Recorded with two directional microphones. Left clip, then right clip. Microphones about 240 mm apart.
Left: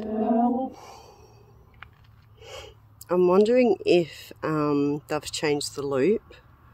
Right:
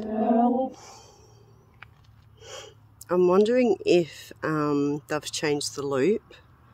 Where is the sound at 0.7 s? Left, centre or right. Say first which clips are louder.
Left 2 dB; centre.